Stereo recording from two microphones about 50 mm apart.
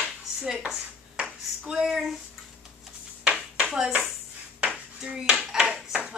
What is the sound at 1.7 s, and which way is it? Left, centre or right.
Speech, centre.